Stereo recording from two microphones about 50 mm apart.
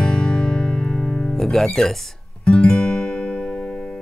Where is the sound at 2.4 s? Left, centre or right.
Left.